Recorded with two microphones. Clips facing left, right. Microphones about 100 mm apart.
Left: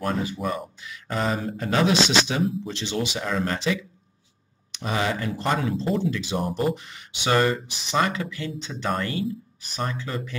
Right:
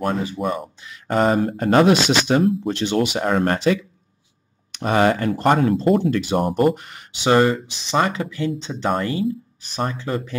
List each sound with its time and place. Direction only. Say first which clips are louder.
0.1 s speech: right 3 dB; 30° right (ahead or behind)
1.0 s speech: right 8 dB; 50° right (ahead or behind)
4.7 s speech: right 8 dB; 50° right (ahead or behind)
7.2 s speech: right 5 dB; 20° right (ahead or behind)